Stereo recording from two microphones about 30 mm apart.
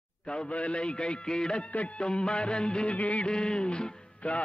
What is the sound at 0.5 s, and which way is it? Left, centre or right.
Music, left.